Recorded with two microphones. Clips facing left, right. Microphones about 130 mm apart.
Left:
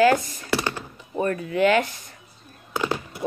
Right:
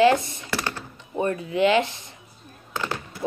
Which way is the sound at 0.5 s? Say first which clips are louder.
Left 4 dB; 15° left (ahead or behind).